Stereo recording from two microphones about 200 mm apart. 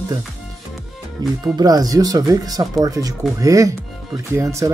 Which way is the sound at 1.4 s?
20° right (ahead or behind).